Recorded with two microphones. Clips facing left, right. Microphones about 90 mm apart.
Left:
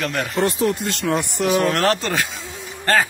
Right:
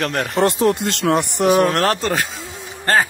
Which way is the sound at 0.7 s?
75° right (ahead or behind).